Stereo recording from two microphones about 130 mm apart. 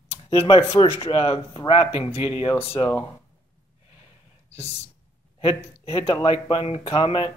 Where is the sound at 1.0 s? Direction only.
40° left (ahead or behind).